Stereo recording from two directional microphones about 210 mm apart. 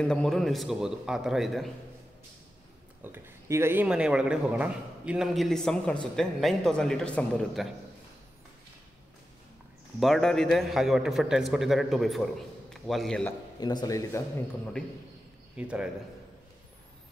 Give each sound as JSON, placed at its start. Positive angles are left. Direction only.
{"t": 0.0, "sound": "a man's voice", "side_deg": 5}
{"t": 3.0, "sound": "a man's voice", "side_deg": -10}
{"t": 9.9, "sound": "a man's voice", "side_deg": 0}
{"t": 13.6, "sound": "speech", "side_deg": 20}
{"t": 15.5, "sound": "a man's voice", "side_deg": -5}